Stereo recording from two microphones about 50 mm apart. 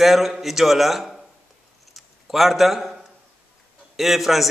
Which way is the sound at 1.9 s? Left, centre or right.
Centre.